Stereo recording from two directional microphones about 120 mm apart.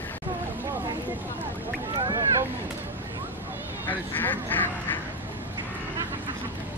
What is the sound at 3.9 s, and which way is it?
Duck, 15° left (ahead or behind).